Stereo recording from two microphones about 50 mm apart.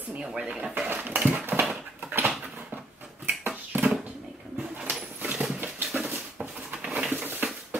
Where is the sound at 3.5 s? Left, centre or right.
Right.